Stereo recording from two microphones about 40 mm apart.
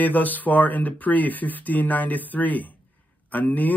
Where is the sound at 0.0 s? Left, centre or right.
Left.